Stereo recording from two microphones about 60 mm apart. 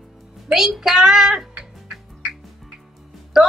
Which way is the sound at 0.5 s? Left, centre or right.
Centre.